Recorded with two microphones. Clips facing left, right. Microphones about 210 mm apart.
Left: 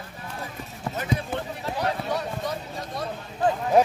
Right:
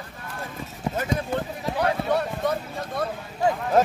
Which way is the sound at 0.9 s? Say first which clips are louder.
Right 4 dB; 15° right (ahead or behind).